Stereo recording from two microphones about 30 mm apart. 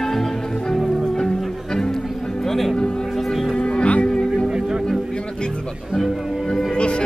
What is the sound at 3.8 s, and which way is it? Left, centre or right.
Music, left.